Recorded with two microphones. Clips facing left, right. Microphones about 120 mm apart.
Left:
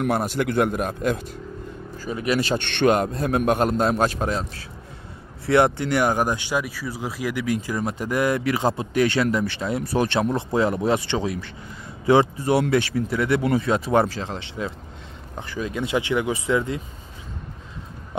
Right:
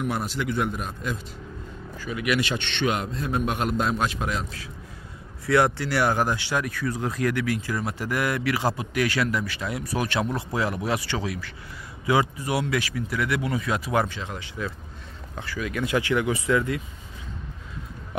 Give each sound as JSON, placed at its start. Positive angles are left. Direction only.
{"t": 0.0, "sound": "a man's voice", "side_deg": 50}
{"t": 2.0, "sound": "speech", "side_deg": 35}
{"t": 2.6, "sound": "a man's voice", "side_deg": 55}
{"t": 3.5, "sound": "speech", "side_deg": 40}